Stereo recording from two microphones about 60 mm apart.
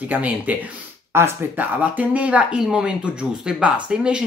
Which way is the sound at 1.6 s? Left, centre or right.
Right.